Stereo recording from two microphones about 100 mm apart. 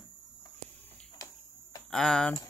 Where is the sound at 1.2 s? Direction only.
30° left (ahead or behind).